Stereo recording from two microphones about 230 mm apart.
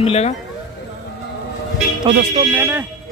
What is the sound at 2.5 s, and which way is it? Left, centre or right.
Speech, centre.